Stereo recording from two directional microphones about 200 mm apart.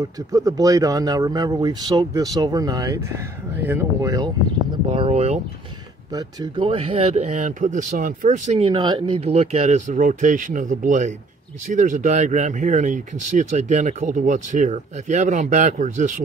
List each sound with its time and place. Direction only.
0.0 s speech: 15° right (ahead or behind)
4.9 s speech: 30° right (ahead or behind)
6.1 s speech: 20° right (ahead or behind); by 16.2 s 40° right (ahead or behind)